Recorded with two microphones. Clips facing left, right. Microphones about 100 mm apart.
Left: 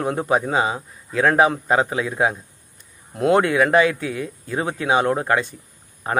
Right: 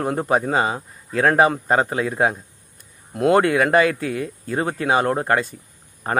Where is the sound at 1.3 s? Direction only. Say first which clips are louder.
Even; centre (ahead or behind).